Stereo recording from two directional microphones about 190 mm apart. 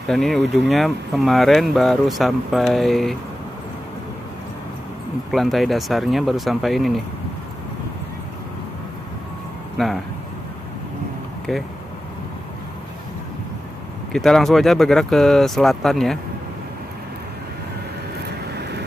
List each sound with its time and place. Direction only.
0.1 s speech: centre (ahead or behind)
5.3 s speech: centre (ahead or behind)
14.1 s speech: centre (ahead or behind)
18.2 s vehicle: 60° right (ahead or behind)